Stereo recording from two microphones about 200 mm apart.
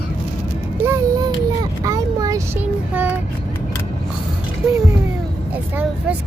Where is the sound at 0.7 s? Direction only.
15° right (ahead or behind).